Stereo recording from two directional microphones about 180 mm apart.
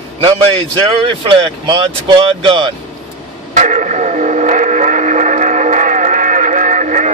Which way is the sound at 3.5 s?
45° right (ahead or behind).